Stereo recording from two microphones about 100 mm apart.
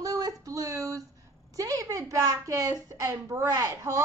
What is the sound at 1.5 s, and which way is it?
A woman's voice, 35° right (ahead or behind).